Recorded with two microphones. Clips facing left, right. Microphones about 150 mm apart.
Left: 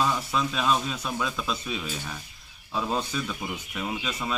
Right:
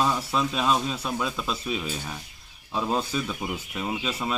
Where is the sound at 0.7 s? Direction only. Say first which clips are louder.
Even; 25° right (ahead or behind).